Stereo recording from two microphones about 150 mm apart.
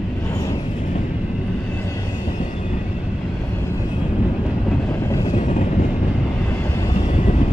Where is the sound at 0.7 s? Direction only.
50° left (ahead or behind).